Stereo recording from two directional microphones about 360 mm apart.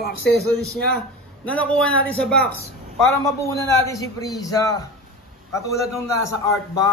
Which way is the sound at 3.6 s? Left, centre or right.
Centre.